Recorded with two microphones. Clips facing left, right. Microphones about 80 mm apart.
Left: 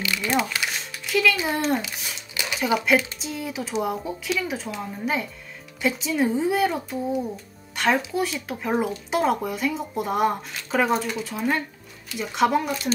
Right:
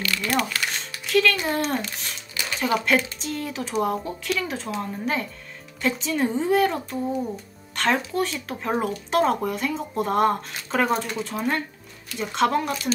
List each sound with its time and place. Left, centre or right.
0.0 s music: centre
0.7 s speech: centre
7.7 s music: centre
8.0 s speech: centre